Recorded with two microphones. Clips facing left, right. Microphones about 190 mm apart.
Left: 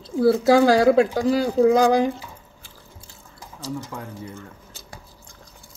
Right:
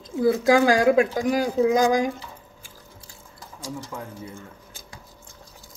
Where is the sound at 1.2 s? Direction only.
15° right (ahead or behind).